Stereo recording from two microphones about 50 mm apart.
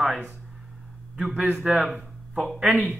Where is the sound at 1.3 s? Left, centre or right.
Right.